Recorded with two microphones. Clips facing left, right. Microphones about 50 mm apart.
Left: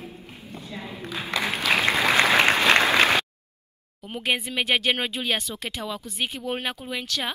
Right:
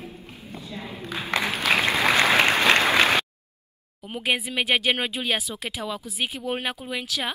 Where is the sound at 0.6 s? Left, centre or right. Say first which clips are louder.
Even; left.